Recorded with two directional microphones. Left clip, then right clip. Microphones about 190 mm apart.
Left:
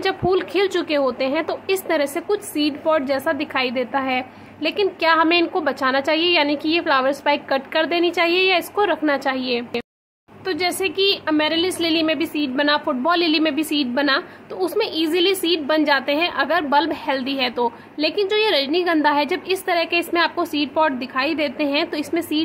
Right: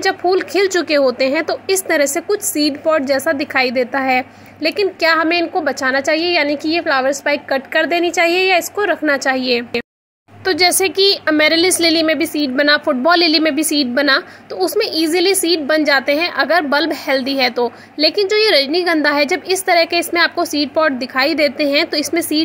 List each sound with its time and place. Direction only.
0.0 s a woman's voice: 5° right (ahead or behind)